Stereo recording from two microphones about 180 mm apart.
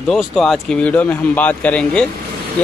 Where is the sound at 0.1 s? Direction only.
5° left (ahead or behind).